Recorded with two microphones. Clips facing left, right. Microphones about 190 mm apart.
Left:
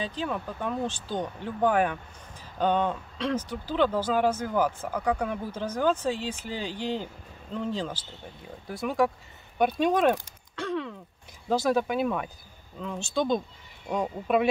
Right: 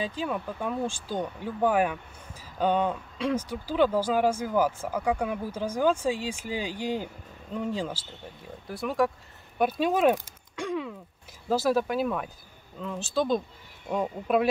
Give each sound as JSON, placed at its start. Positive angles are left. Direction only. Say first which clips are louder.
{"t": 0.0, "sound": "speech", "louder": "right 1 dB", "side_deg": -10}
{"t": 9.6, "sound": "a sound", "louder": "left 1 dB", "side_deg": -5}
{"t": 11.4, "sound": "speech", "louder": "even", "side_deg": -5}